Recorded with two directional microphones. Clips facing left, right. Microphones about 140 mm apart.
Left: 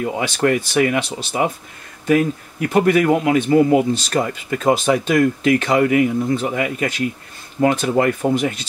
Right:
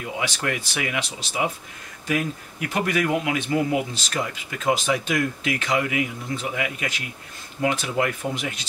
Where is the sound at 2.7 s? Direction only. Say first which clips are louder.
Left 8 dB; 45° left (ahead or behind).